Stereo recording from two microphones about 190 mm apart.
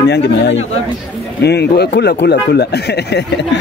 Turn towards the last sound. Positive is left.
turn(degrees=60)  # may be behind; listen again after turning